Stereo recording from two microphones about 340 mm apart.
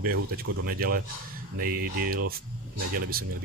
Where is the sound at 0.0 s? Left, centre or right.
Right.